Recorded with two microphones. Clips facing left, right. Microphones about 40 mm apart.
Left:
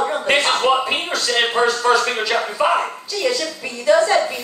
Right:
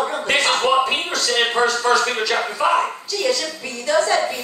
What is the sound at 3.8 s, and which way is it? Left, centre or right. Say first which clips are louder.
Speech: left 3 dB; centre.